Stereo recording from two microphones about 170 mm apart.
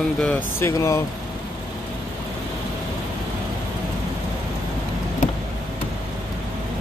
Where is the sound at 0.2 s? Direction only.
10° left (ahead or behind).